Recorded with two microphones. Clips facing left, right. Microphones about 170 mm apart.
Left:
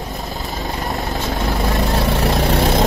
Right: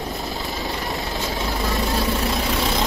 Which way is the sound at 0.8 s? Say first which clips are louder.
Left 4 dB; 50° left (ahead or behind).